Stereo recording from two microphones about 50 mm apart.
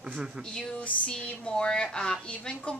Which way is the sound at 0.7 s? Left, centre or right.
Left.